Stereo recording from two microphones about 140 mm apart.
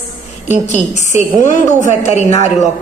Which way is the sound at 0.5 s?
55° left (ahead or behind).